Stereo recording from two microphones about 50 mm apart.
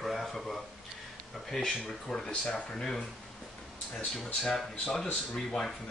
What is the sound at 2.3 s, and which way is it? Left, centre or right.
Speech, left.